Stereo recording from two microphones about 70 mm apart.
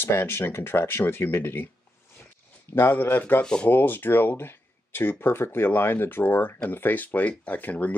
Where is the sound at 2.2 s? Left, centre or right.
Left.